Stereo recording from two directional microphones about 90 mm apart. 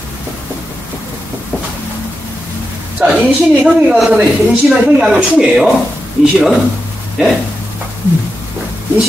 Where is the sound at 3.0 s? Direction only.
20° right (ahead or behind); by 5.7 s 5° right (ahead or behind).